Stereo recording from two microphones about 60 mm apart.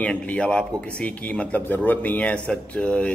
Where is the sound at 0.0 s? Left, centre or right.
Centre.